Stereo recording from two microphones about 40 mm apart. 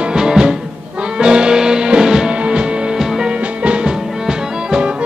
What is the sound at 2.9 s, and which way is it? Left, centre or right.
Music, centre.